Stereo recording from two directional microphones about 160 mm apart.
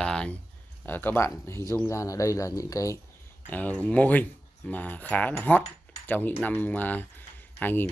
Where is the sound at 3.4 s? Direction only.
10° left (ahead or behind).